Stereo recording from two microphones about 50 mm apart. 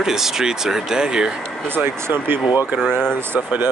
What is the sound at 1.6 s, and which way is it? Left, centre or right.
Speech, right.